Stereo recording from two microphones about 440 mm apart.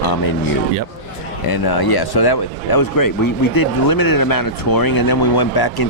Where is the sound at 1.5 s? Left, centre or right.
Left.